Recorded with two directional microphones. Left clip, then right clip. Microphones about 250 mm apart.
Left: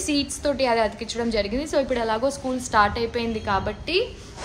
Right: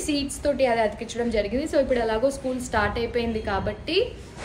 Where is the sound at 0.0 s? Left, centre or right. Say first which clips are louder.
Left 1 dB; centre.